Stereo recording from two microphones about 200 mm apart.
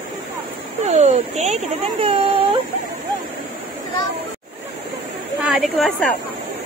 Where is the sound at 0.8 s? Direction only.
35° right (ahead or behind).